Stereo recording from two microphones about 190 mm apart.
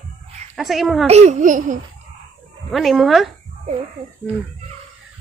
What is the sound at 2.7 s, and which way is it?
Speech, centre (ahead or behind).